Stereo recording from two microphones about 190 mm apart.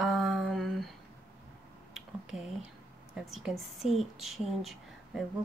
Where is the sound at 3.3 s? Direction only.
Centre (ahead or behind).